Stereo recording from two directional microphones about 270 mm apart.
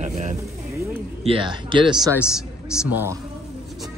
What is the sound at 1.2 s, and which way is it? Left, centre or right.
Speech, centre.